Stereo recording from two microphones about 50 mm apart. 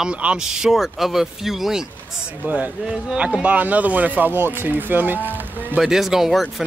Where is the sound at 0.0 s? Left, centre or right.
Right; by 1.8 s centre.